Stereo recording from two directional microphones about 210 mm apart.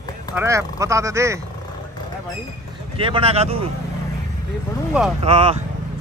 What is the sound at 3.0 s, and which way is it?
Speech, 25° right (ahead or behind).